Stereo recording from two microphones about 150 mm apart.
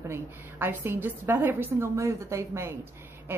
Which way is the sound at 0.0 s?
15° right (ahead or behind).